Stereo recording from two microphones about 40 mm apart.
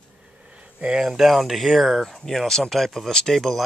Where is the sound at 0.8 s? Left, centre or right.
Right.